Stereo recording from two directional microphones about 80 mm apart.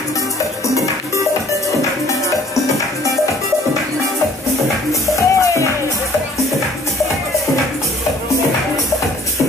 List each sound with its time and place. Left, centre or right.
5.1 s music: left